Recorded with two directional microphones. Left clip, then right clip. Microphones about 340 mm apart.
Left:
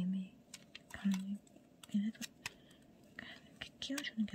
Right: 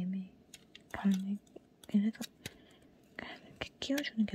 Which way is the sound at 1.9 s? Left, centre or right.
Centre.